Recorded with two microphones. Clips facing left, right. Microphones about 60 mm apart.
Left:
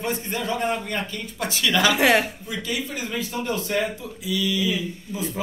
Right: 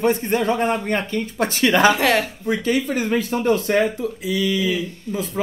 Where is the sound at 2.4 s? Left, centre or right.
Right.